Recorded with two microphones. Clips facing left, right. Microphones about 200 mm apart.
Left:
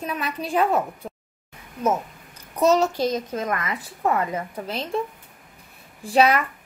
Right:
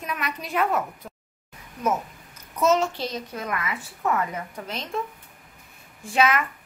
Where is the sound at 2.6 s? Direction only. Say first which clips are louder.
Left 3 dB; 35° left (ahead or behind).